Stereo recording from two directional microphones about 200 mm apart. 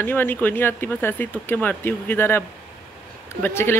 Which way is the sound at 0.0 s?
10° left (ahead or behind).